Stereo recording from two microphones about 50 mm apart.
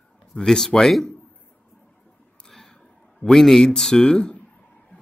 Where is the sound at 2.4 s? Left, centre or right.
Centre.